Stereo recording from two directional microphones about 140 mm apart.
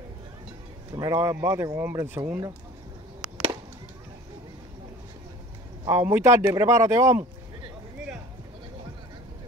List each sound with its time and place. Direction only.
0.9 s speech: 25° right (ahead or behind)
5.9 s speech: 15° right (ahead or behind)